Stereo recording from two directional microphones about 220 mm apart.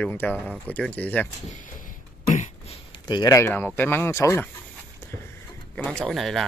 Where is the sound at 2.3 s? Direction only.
30° left (ahead or behind).